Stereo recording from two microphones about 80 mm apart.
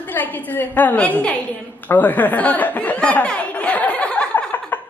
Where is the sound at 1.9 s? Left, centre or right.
Left.